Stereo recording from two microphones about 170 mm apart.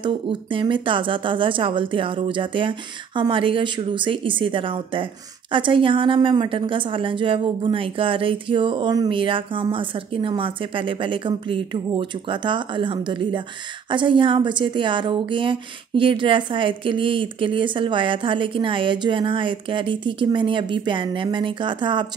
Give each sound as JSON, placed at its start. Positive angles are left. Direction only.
{"t": 0.0, "sound": "speech", "side_deg": -30}